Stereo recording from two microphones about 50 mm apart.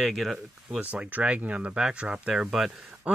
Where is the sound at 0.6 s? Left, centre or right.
Right.